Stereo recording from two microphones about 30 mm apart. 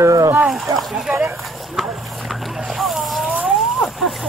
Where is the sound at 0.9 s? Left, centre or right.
Right.